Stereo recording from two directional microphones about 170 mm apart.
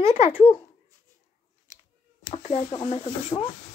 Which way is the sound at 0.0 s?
35° left (ahead or behind).